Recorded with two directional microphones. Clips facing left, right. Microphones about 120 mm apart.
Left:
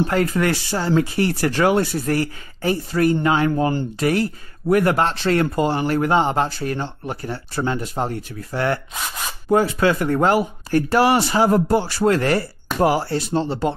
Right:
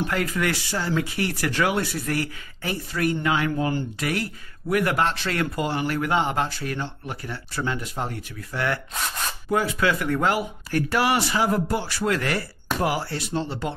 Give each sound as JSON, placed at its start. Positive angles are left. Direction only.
{"t": 0.0, "sound": "speech", "side_deg": 35}
{"t": 8.9, "sound": "zipper", "side_deg": 5}
{"t": 9.5, "sound": "speech", "side_deg": 35}